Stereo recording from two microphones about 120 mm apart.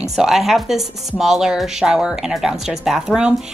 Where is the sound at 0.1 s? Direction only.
5° right (ahead or behind).